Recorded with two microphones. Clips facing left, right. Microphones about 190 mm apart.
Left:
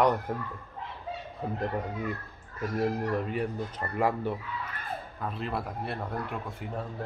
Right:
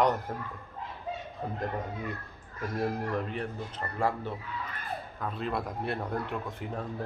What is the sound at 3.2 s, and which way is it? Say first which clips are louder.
A man's voice: left 4 dB; 10° left (ahead or behind).